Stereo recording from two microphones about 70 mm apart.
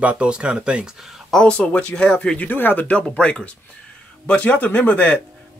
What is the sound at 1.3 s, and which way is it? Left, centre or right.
Speech, centre.